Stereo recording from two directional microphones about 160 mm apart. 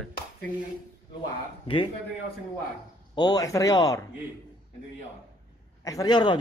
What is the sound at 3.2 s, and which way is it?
Speech, 25° left (ahead or behind).